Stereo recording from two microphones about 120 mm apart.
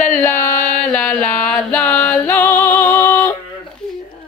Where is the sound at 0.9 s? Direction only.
10° left (ahead or behind).